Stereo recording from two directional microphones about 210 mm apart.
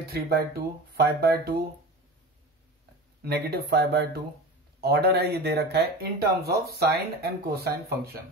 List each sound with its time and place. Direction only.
0.1 s speech: 50° right (ahead or behind)
3.2 s speech: 50° right (ahead or behind)